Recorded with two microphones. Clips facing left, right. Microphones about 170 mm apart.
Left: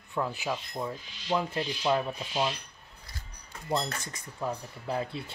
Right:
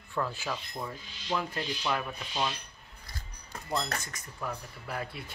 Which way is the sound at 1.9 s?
25° left (ahead or behind).